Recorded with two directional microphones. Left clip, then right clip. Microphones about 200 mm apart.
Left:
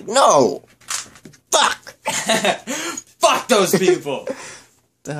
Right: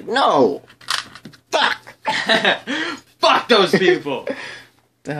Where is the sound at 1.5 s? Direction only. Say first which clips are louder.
Left 1 dB; 30° left (ahead or behind).